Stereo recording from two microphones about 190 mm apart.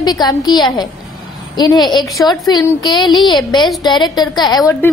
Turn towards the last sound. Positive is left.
turn(degrees=20)  # may be behind; listen again after turning